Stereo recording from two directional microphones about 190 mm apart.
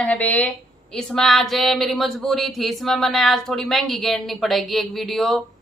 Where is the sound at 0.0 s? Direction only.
10° left (ahead or behind).